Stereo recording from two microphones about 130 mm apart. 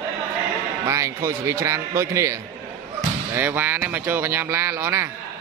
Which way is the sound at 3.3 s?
15° right (ahead or behind).